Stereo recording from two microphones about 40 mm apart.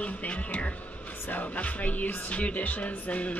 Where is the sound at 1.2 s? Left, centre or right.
Left.